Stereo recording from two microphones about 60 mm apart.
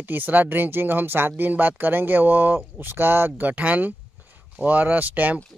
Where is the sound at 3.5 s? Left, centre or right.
Right.